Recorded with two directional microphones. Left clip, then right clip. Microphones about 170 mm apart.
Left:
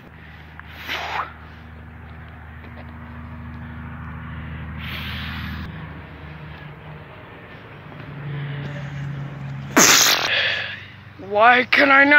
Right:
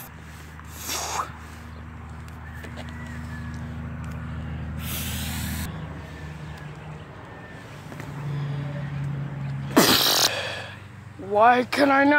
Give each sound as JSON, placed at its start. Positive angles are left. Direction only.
{"t": 0.8, "sound": "a sound", "side_deg": -15}
{"t": 4.7, "sound": "spray", "side_deg": -15}
{"t": 9.8, "sound": "beatboxing", "side_deg": -10}
{"t": 11.3, "sound": "speech", "side_deg": -15}